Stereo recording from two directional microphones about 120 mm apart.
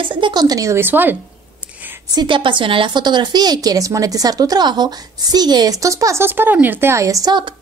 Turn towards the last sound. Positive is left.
turn(degrees=-30)  # may be behind; listen again after turning